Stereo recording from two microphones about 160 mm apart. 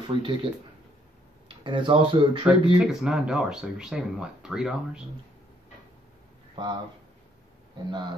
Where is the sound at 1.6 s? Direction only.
30° right (ahead or behind).